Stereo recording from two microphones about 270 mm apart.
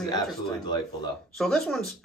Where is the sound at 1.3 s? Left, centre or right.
Centre.